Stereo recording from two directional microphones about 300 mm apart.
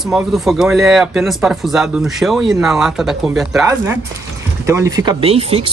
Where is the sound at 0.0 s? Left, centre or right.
Centre.